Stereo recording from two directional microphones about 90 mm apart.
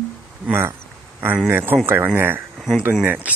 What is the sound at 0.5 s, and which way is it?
Speech, 25° right (ahead or behind).